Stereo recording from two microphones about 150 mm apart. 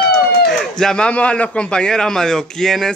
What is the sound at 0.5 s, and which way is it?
A man's voice, 5° left (ahead or behind).